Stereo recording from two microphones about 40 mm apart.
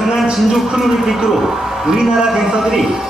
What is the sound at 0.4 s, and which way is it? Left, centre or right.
A man's voice, centre.